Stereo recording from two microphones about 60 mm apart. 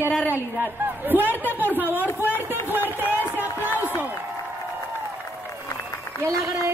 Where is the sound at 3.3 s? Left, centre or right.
Right.